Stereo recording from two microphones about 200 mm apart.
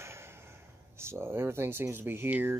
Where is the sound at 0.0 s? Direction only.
15° right (ahead or behind).